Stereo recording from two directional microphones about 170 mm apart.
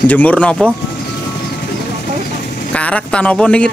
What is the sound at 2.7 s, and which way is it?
Speech, 5° left (ahead or behind).